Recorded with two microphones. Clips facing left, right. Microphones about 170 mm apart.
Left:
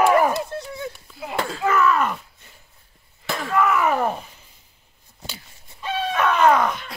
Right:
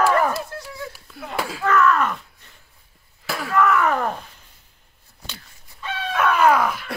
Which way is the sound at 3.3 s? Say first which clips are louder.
Right 1 dB; 5° right (ahead or behind).